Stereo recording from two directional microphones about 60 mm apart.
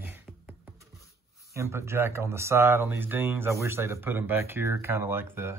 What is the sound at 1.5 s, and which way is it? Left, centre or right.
Speech, right.